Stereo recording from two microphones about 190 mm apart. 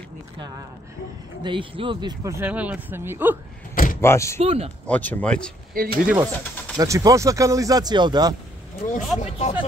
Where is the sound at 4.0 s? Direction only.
15° left (ahead or behind).